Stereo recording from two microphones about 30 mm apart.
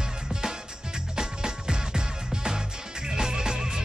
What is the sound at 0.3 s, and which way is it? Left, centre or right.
Music, right.